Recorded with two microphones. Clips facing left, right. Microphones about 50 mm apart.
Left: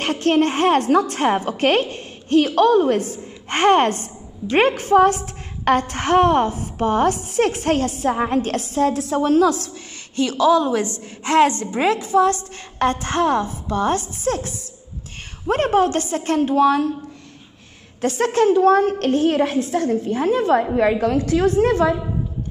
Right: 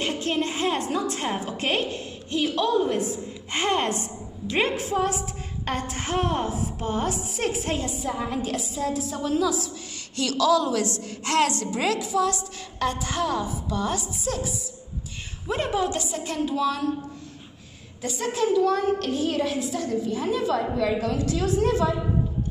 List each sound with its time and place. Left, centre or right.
0.0 s a woman's voice: left
10.1 s a woman's voice: left
18.0 s a woman's voice: left